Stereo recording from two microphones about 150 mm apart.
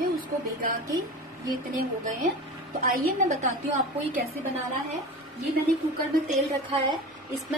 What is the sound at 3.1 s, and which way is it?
A woman's voice, 55° right (ahead or behind).